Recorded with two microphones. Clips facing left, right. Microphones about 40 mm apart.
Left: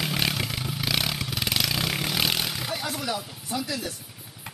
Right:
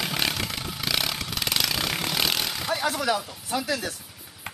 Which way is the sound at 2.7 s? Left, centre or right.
Centre.